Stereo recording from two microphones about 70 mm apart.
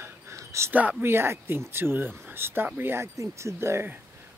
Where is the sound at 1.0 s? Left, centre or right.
Right.